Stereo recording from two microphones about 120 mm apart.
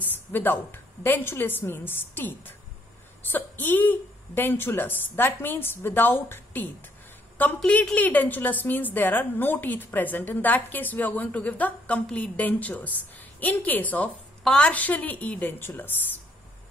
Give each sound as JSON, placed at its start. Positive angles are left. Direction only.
{"t": 0.0, "sound": "a woman's voice", "side_deg": 15}